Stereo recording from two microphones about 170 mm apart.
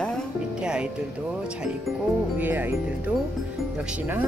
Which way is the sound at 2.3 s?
10° right (ahead or behind).